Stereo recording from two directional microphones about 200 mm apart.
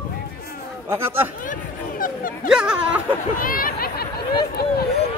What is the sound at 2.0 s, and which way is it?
Dog, 45° left (ahead or behind).